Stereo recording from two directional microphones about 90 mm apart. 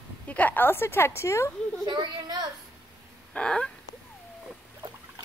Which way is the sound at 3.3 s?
10° left (ahead or behind).